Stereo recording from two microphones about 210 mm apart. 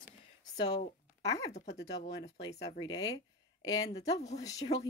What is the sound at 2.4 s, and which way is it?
A woman's voice, 25° left (ahead or behind).